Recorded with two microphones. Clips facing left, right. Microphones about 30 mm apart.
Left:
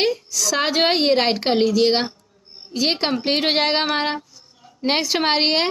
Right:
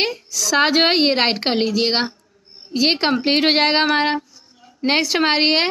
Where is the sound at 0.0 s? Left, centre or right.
Centre.